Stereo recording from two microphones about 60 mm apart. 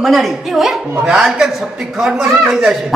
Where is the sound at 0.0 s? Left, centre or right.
Centre.